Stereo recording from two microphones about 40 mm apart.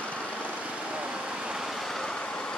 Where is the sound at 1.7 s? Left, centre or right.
Centre.